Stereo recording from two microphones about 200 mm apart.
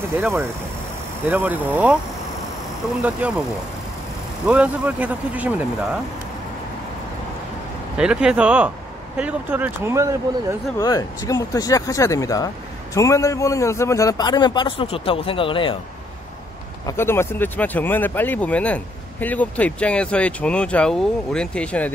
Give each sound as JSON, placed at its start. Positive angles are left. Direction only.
{"t": 0.2, "sound": "speech", "side_deg": -10}
{"t": 3.0, "sound": "speech", "side_deg": -5}
{"t": 4.5, "sound": "speech", "side_deg": -5}
{"t": 8.0, "sound": "speech", "side_deg": -5}
{"t": 10.8, "sound": "a man's voice", "side_deg": 15}
{"t": 16.8, "sound": "speech", "side_deg": 10}